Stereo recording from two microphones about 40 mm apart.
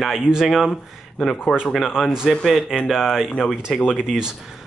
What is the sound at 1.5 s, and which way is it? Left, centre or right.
Speech, left.